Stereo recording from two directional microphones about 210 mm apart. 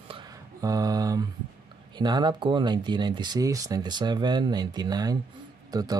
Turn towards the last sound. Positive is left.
turn(degrees=-15)  # may be behind; listen again after turning